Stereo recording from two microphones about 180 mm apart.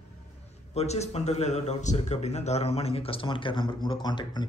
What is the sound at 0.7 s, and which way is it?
Speech, 35° left (ahead or behind).